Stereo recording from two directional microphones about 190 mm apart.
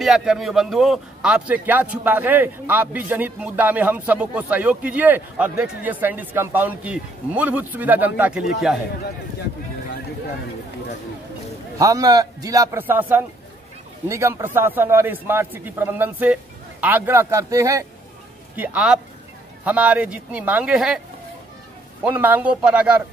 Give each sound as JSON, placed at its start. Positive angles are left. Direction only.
{"t": 0.0, "sound": "a man's voice", "side_deg": -5}
{"t": 11.8, "sound": "a man's voice", "side_deg": -20}
{"t": 22.0, "sound": "a man's voice", "side_deg": -10}